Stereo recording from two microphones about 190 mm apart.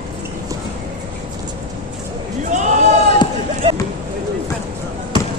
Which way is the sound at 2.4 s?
40° right (ahead or behind).